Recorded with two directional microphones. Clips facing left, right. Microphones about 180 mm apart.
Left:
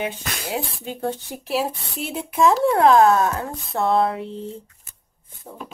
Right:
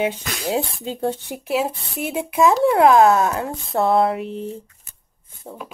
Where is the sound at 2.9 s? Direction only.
20° right (ahead or behind).